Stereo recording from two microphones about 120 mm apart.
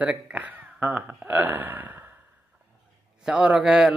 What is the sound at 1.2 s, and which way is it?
Burping, 15° right (ahead or behind).